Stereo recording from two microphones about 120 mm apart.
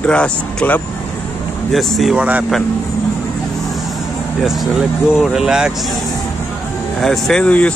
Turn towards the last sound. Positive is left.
turn(degrees=10)  # may be behind; listen again after turning